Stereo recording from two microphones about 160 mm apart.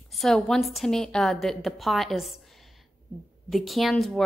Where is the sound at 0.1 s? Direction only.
Centre (ahead or behind).